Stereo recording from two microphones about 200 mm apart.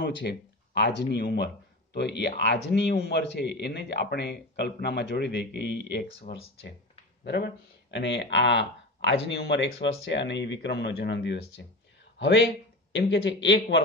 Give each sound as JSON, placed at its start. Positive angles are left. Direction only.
{"t": 0.0, "sound": "speech", "side_deg": 55}